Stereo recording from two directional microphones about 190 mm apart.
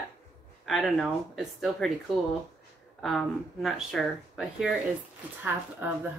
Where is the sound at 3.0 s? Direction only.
Centre (ahead or behind).